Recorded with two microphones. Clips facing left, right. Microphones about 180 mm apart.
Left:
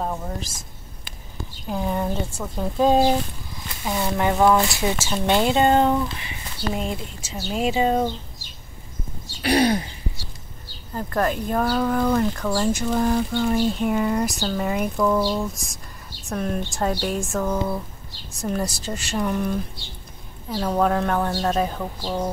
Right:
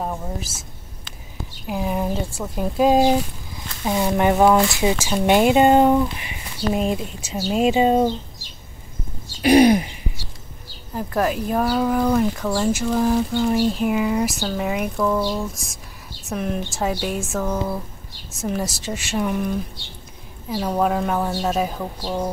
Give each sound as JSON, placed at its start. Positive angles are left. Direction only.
{"t": 0.0, "sound": "speech", "side_deg": -5}
{"t": 1.7, "sound": "speech", "side_deg": -5}
{"t": 9.4, "sound": "a sound", "side_deg": -15}
{"t": 11.0, "sound": "speech", "side_deg": -5}